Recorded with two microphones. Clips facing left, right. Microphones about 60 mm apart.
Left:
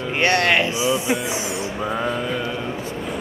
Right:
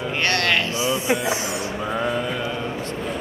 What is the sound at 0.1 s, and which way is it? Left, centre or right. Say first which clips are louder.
Speech: left 4 dB; centre.